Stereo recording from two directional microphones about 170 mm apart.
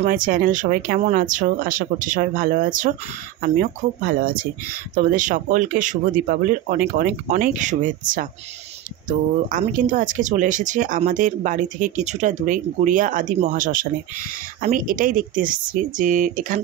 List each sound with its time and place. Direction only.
0.0 s speech: 55° right (ahead or behind)
4.0 s speech: 60° right (ahead or behind)
9.5 s speech: 50° right (ahead or behind)